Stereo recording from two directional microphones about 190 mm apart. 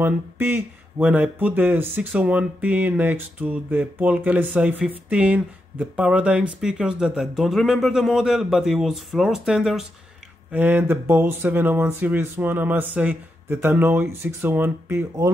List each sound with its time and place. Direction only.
0.0 s speech: 10° right (ahead or behind)